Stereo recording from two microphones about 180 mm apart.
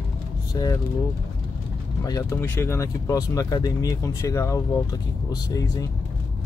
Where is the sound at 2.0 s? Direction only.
20° left (ahead or behind).